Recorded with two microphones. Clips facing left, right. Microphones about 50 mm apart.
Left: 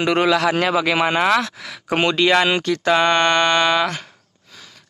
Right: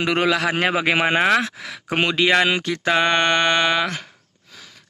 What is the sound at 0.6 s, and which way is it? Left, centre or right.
Speech, right.